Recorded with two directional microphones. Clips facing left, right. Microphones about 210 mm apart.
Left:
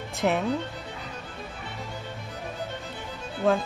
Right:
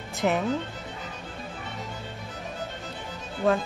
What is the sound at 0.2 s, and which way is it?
Speech, 5° left (ahead or behind).